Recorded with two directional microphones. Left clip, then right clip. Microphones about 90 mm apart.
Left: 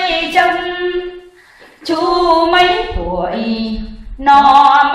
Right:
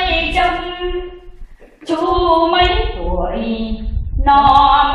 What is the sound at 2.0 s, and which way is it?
Female singing, 15° left (ahead or behind).